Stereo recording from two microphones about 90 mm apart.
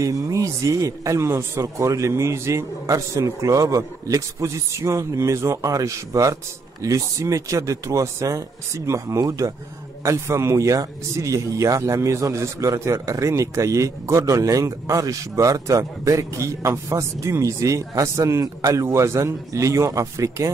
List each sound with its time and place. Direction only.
0.0 s speech: 35° right (ahead or behind)